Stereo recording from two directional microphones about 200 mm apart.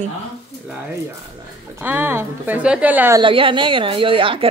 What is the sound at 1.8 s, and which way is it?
A woman's voice, 10° right (ahead or behind).